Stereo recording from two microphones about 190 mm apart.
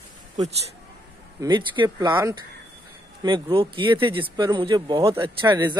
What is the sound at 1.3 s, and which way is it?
Speech, 25° right (ahead or behind).